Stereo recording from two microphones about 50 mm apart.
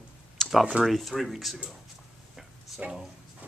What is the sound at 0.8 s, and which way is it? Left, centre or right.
Speech, centre.